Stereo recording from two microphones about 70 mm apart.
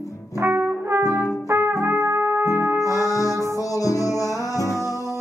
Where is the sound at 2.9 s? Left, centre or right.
Left.